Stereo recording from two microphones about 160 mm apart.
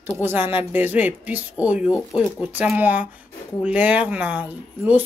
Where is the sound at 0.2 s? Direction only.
15° right (ahead or behind).